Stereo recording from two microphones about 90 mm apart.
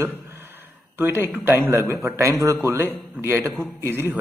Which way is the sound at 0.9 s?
25° right (ahead or behind).